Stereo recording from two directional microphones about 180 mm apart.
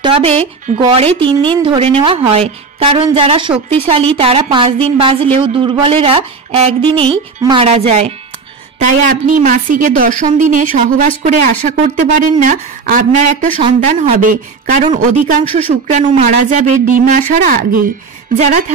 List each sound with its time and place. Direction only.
0.0 s a woman's voice: 30° right (ahead or behind)
14.1 s a woman's voice: 50° right (ahead or behind)